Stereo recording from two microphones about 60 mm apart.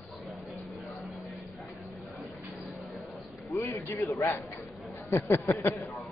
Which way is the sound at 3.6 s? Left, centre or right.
Left.